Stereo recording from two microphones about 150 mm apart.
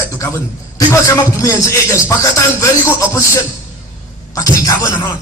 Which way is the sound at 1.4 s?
20° left (ahead or behind).